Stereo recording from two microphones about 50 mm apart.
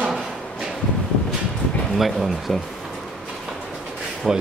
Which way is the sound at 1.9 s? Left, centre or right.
Centre.